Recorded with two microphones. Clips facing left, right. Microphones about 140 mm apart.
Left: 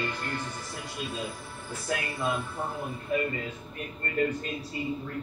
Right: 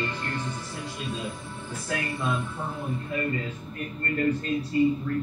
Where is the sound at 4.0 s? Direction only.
15° left (ahead or behind).